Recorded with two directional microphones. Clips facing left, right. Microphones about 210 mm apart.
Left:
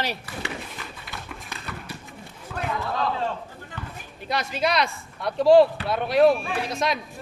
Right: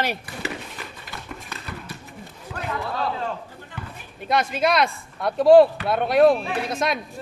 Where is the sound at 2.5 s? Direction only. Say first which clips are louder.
Left 2 dB; 20° right (ahead or behind).